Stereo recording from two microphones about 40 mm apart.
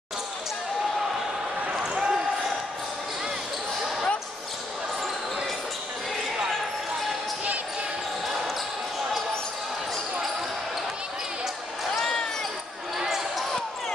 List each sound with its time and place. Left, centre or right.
1.7 s basketball bounce: right
12.9 s basketball bounce: centre